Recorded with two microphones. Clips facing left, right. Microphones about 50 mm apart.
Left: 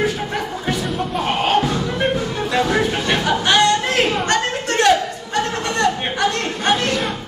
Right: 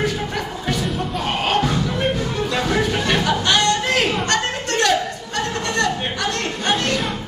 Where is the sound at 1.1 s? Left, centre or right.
Left.